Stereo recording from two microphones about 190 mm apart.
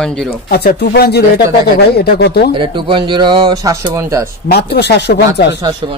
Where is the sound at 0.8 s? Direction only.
60° left (ahead or behind).